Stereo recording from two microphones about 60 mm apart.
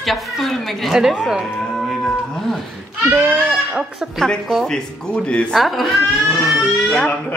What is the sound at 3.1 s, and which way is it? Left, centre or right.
Goat, right.